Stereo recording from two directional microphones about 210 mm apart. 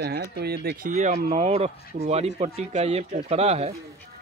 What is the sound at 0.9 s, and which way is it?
Speech, 35° right (ahead or behind).